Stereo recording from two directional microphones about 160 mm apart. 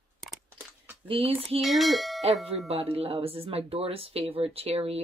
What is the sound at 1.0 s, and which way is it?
Speech, 35° right (ahead or behind).